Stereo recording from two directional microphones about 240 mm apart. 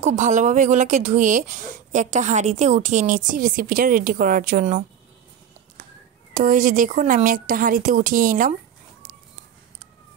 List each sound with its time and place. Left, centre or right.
0.0 s speech: right
6.3 s speech: right